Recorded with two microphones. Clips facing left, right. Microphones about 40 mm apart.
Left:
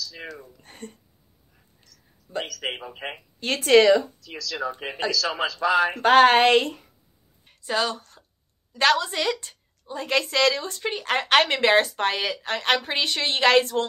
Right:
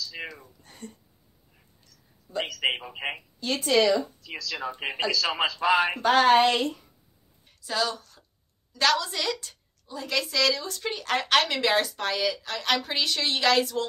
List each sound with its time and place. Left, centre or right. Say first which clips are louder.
0.0 s speech: right 1 dB; right
0.6 s a woman's voice: left 3 dB; left
1.9 s a sound: left 5 dB; left
3.3 s speech: left 6 dB; left
4.2 s speech: even; right
4.6 s speech: even; right
5.1 s speech: left 1 dB; right
6.0 s a woman's voice: left 4 dB; left
7.6 s a woman's voice: left 3 dB; left
8.7 s a woman's voice: left 3 dB; left
9.8 s speech: left 5 dB; left
10.7 s speech: left 2 dB; left